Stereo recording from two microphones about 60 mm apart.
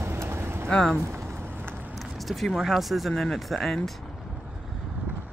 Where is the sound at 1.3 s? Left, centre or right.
Right.